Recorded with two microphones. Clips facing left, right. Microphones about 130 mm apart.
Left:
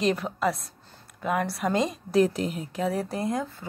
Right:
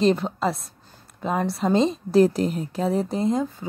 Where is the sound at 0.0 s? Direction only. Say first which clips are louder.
Right 4 dB; 25° right (ahead or behind).